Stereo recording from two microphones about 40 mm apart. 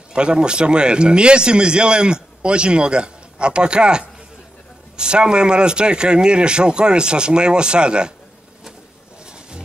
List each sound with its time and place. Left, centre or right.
0.1 s speech: right